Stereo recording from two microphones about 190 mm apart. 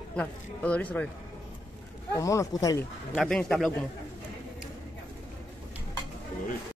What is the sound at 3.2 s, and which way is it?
Speech, 5° left (ahead or behind).